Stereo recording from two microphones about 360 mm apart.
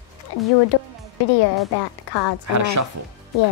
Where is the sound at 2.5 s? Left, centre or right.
Right.